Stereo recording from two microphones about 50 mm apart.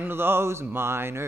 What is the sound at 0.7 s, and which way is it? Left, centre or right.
Speech, right.